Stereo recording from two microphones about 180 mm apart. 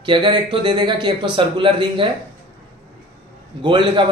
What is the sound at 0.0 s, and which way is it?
A man's voice, 25° right (ahead or behind).